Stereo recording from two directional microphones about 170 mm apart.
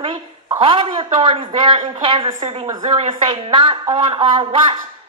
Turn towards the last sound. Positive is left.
turn(degrees=-30)  # may be behind; listen again after turning